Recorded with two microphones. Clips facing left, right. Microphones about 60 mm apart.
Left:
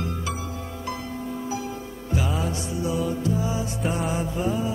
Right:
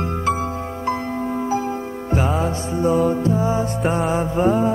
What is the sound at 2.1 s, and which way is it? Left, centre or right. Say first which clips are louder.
Music: right 6 dB; right.